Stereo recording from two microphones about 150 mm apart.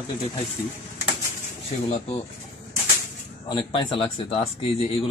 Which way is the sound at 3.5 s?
30° left (ahead or behind).